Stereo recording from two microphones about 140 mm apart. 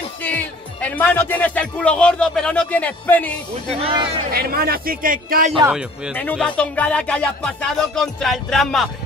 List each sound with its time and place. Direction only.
0.2 s speech: 10° left (ahead or behind)
4.3 s a man's voice: 90° right
5.7 s a man's voice: 5° right (ahead or behind)
6.1 s speech: 10° left (ahead or behind)